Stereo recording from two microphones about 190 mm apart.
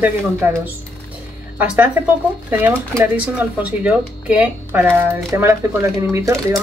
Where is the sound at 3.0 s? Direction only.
5° right (ahead or behind).